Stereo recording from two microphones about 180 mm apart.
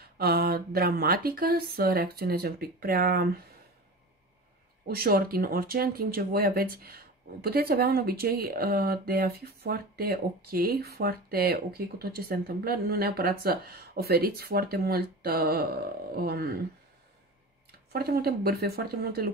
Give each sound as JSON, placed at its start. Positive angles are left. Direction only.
{"t": 0.2, "sound": "speech", "side_deg": -60}
{"t": 4.8, "sound": "speech", "side_deg": -55}
{"t": 17.6, "sound": "speech", "side_deg": -60}